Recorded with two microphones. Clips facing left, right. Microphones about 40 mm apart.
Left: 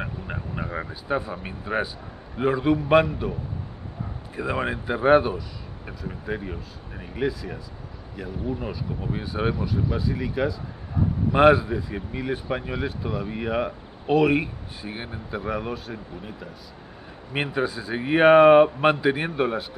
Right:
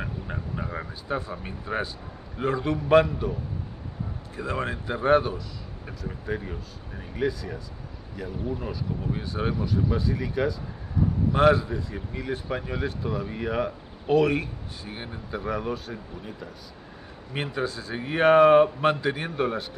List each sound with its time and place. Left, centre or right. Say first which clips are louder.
0.0 s a sound: left 1 dB; centre
2.3 s speech: left 5 dB; centre
4.4 s speech: left 3 dB; centre
11.0 s speech: left 3 dB; left
17.3 s speech: left 4 dB; left